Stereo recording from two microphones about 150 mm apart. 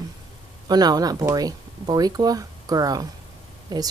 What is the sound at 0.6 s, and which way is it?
Speech, 25° right (ahead or behind).